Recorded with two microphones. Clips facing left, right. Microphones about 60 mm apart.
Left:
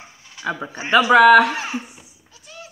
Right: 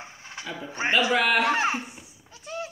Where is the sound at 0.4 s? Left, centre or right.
Right.